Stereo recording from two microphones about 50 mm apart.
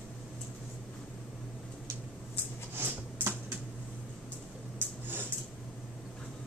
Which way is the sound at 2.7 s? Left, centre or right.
Right.